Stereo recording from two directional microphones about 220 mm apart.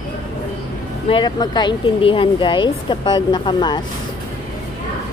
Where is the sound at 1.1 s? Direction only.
20° left (ahead or behind).